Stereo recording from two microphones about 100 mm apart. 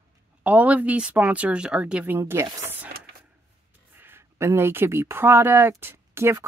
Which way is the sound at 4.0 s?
25° right (ahead or behind).